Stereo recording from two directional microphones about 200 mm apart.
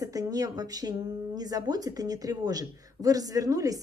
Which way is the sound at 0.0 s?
15° right (ahead or behind).